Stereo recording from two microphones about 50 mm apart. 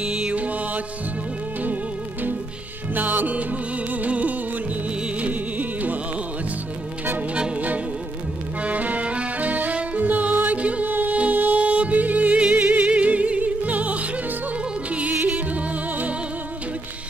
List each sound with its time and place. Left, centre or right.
0.0 s music: right
2.9 s music: right
8.6 s music: right